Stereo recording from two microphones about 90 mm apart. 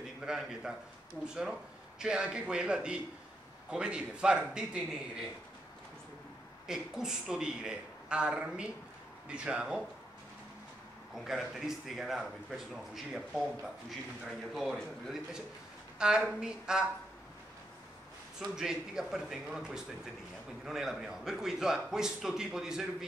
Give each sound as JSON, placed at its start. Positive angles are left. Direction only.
{"t": 0.0, "sound": "a man's voice", "side_deg": -5}
{"t": 6.7, "sound": "a man's voice", "side_deg": -5}
{"t": 11.1, "sound": "a man's voice", "side_deg": 0}
{"t": 18.4, "sound": "speech", "side_deg": -5}